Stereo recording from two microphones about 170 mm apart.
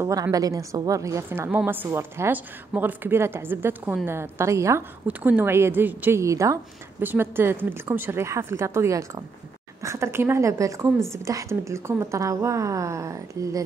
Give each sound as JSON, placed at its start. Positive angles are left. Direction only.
{"t": 0.0, "sound": "a woman's voice", "side_deg": -20}